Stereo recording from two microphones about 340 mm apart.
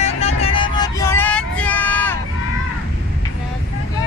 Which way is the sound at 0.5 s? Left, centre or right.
Centre.